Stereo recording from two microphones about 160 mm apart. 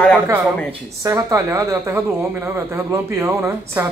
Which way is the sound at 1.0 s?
20° right (ahead or behind).